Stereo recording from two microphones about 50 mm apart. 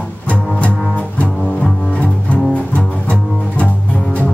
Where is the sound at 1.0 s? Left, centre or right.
Left.